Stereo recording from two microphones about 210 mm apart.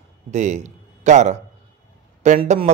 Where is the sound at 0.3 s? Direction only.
35° right (ahead or behind).